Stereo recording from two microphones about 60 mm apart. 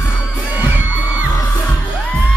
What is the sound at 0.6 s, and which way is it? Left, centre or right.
Music, right.